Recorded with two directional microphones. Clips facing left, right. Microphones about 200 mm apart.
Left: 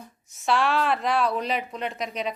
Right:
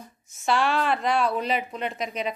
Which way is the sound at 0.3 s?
Centre (ahead or behind).